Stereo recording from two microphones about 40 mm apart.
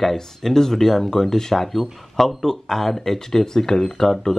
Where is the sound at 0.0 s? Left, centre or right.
Centre.